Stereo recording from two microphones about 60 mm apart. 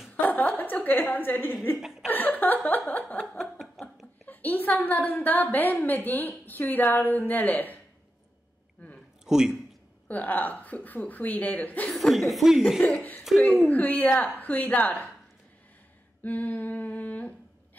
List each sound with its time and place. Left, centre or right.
0.1 s a sound: left
1.8 s chuckle: centre
2.0 s a woman's voice: left
9.2 s a man's voice: centre
10.0 s a woman's voice: left
11.9 s speech: centre
13.4 s a woman's voice: left
16.3 s humming: left